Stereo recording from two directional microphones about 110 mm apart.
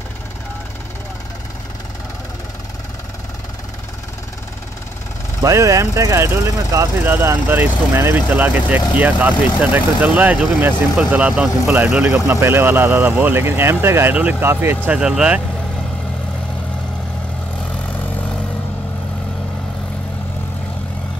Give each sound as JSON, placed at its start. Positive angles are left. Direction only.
{"t": 5.4, "sound": "speech", "side_deg": -30}
{"t": 14.9, "sound": "speech", "side_deg": -5}